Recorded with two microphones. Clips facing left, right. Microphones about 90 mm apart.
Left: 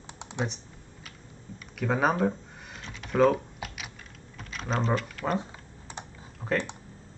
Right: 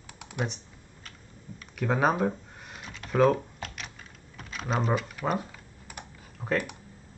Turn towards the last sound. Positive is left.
turn(degrees=20)  # may be behind; listen again after turning